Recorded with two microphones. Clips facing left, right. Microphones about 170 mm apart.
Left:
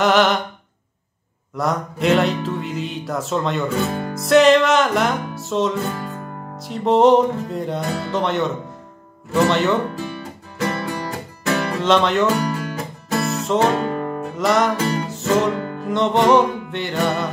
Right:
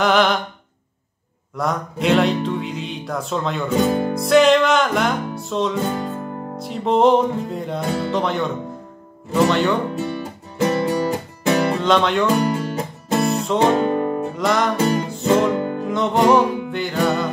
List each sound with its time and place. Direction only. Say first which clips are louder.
0.0 s music: left 1 dB; centre (ahead or behind)
1.5 s music: left 1 dB; centre (ahead or behind)
3.7 s speech: right 5 dB; 30° right (ahead or behind)
4.1 s music: left 3 dB; centre (ahead or behind)
5.8 s music: right 3 dB; 30° right (ahead or behind)
6.6 s music: left 2 dB; centre (ahead or behind)
9.5 s music: even; centre (ahead or behind)
10.0 s music: right 4 dB; 30° right (ahead or behind)
11.8 s music: left 1 dB; centre (ahead or behind)
12.4 s music: right 3 dB; 30° right (ahead or behind)
14.3 s music: left 5 dB; centre (ahead or behind)
15.5 s music: right 4 dB; 25° right (ahead or behind)
15.9 s music: left 1 dB; centre (ahead or behind)